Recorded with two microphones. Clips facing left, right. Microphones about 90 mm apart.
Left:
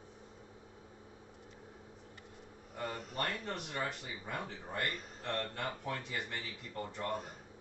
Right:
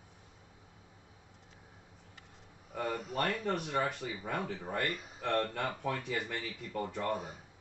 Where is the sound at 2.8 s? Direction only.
45° right (ahead or behind).